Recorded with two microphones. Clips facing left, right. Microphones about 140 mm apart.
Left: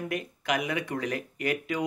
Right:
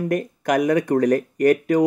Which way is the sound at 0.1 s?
45° right (ahead or behind).